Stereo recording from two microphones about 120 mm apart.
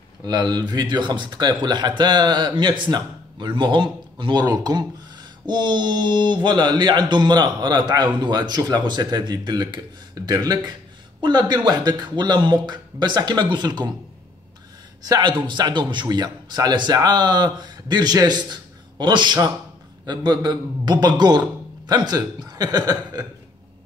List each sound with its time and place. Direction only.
0.2 s speech: 35° right (ahead or behind)
15.0 s speech: 40° right (ahead or behind)